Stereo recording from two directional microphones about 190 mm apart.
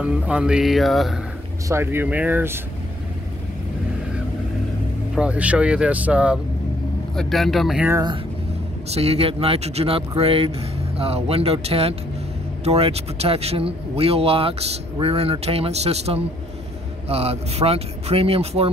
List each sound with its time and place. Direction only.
0.0 s speech: 5° right (ahead or behind)
1.7 s speech: 10° right (ahead or behind)
5.1 s speech: 5° right (ahead or behind)
7.9 s speech: 20° right (ahead or behind)
8.9 s speech: 35° right (ahead or behind)